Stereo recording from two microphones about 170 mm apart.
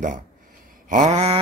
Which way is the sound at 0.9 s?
45° right (ahead or behind).